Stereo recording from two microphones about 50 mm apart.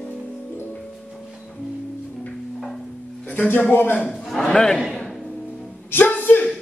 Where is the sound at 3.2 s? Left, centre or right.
Left.